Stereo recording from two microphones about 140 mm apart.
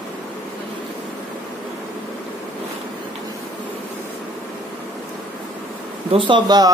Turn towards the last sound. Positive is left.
turn(degrees=-30)  # may be behind; listen again after turning